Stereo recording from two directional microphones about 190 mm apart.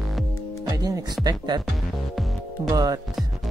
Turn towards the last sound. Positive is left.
turn(degrees=-20)  # may be behind; listen again after turning